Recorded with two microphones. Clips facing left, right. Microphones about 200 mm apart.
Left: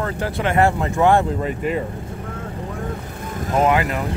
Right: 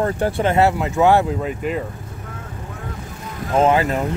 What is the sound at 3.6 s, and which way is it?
Speech, 35° right (ahead or behind).